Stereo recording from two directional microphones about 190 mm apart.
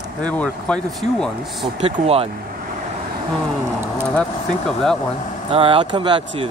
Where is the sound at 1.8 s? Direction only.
30° right (ahead or behind).